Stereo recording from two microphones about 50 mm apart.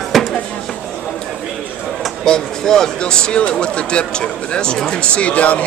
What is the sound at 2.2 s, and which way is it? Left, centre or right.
Speech, centre.